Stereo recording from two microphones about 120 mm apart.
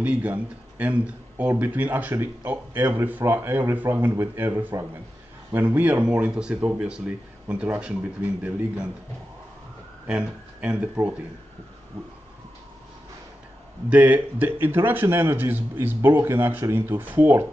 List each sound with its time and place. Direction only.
0.0 s a man's voice: 10° right (ahead or behind)
10.0 s speech: 10° right (ahead or behind)
11.0 s speech: 30° right (ahead or behind)
13.8 s a man's voice: 10° right (ahead or behind)